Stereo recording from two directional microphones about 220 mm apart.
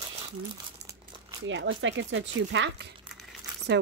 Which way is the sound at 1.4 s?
60° right (ahead or behind).